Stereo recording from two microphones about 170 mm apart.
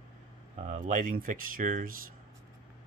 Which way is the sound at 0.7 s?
50° right (ahead or behind).